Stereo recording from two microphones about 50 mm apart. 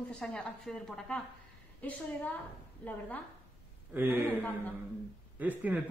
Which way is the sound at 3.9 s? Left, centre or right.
Right.